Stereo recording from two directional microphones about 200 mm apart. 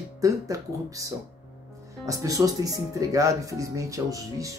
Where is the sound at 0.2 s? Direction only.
15° right (ahead or behind).